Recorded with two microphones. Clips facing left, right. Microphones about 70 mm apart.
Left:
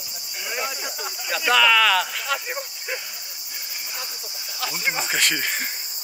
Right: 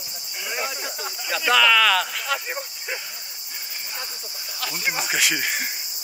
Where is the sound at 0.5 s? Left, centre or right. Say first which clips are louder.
Even; centre.